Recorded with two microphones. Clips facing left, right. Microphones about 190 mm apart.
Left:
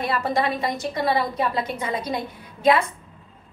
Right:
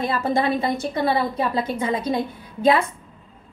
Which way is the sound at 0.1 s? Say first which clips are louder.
Right 1 dB; 25° right (ahead or behind).